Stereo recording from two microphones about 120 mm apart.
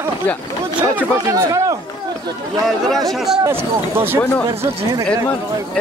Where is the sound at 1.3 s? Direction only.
30° right (ahead or behind).